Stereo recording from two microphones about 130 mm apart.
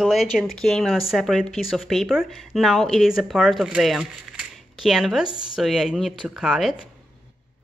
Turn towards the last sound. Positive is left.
turn(degrees=-5)  # may be behind; listen again after turning